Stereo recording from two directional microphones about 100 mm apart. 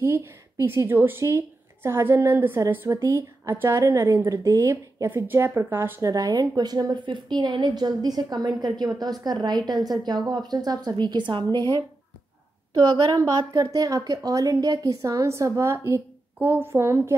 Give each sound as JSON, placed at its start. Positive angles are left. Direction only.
{"t": 0.0, "sound": "a woman's voice", "side_deg": -30}
{"t": 5.1, "sound": "speech", "side_deg": -20}